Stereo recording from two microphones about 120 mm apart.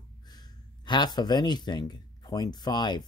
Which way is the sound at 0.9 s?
35° left (ahead or behind).